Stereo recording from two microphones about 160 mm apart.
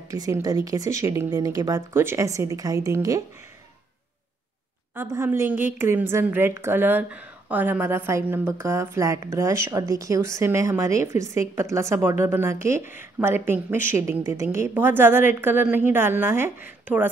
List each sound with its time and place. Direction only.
0.1 s speech: 25° right (ahead or behind)
4.9 s a woman's voice: 15° right (ahead or behind)